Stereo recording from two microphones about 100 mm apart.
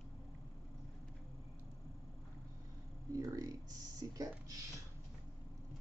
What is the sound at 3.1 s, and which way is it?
A man's voice, 35° right (ahead or behind).